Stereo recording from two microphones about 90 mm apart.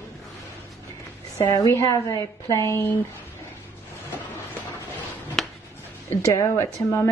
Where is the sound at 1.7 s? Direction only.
35° left (ahead or behind).